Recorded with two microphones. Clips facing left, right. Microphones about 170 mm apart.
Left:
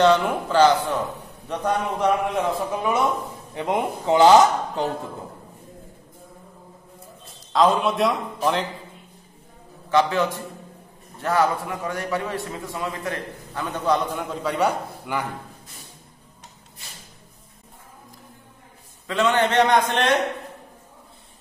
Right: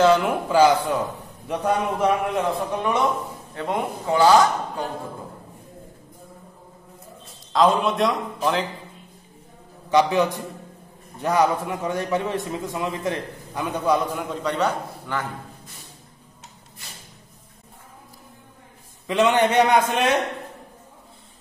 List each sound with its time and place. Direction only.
0.0 s a man's voice: 5° right (ahead or behind)
3.5 s speech: 20° left (ahead or behind)
7.5 s a man's voice: centre (ahead or behind)
9.8 s a man's voice: 15° right (ahead or behind); by 15.2 s 10° left (ahead or behind)
19.0 s a man's voice: 15° right (ahead or behind)